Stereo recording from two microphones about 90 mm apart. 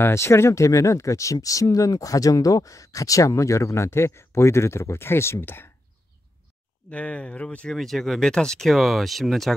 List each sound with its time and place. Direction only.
0.0 s speech: 30° left (ahead or behind)
6.9 s speech: 15° left (ahead or behind)